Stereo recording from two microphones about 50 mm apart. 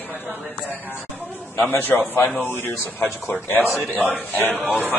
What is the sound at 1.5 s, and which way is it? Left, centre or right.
Speech, left.